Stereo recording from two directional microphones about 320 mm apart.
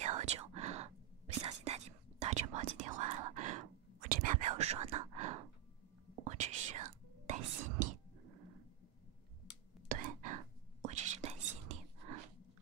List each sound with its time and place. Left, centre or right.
0.0 s whispering: right
9.8 s whispering: right